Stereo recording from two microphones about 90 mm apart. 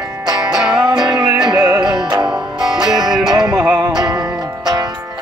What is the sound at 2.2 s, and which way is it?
Music, 5° right (ahead or behind).